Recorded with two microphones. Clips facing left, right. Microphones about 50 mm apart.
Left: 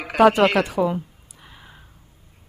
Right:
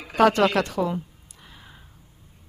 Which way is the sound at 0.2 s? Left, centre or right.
Centre.